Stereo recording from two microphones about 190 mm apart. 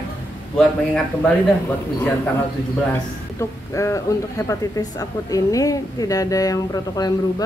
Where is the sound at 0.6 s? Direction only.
5° left (ahead or behind).